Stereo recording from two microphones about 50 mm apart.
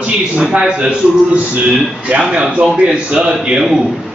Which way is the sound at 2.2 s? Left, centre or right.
Centre.